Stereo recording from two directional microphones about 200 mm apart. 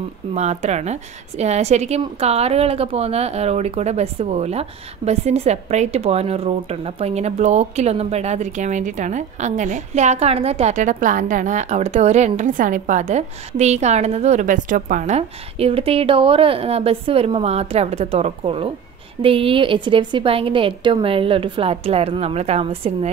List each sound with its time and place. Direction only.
0.3 s a woman's voice: 35° right (ahead or behind)